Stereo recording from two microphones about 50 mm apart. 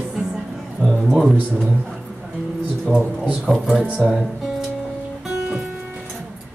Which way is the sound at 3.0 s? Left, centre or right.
Right.